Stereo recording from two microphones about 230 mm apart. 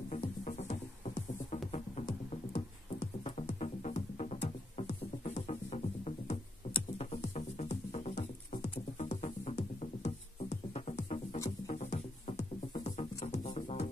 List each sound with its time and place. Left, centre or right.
0.1 s music: left